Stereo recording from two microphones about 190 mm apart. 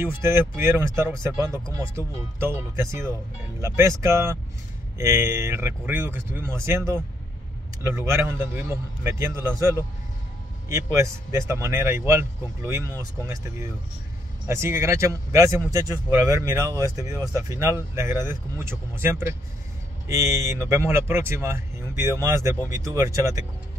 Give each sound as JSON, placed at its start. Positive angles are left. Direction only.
{"t": 0.0, "sound": "speech", "side_deg": -10}